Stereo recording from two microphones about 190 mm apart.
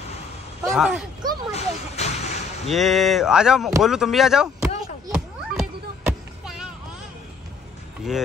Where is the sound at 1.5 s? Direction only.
35° left (ahead or behind).